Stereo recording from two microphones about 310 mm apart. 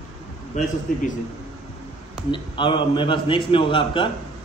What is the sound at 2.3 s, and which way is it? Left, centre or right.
A man's voice, centre.